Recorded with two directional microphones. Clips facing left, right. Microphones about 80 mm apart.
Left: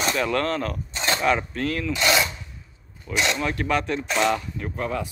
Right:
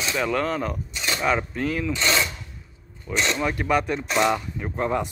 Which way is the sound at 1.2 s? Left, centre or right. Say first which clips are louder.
Right 1 dB; centre.